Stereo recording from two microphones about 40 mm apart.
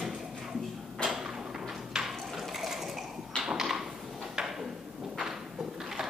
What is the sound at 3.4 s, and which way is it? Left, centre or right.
Tap, centre.